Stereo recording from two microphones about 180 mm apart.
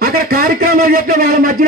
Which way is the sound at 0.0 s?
55° right (ahead or behind).